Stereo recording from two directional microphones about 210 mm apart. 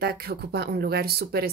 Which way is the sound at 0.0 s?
50° right (ahead or behind).